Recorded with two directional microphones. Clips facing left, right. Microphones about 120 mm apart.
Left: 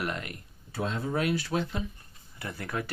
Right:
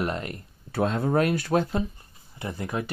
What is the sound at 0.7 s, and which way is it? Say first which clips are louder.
Speech: right 7 dB; 55° right (ahead or behind).